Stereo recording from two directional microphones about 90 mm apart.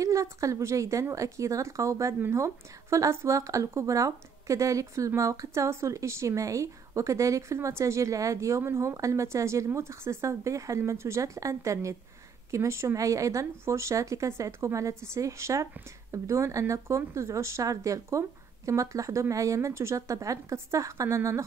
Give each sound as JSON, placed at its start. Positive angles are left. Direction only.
{"t": 0.0, "sound": "speech", "side_deg": -35}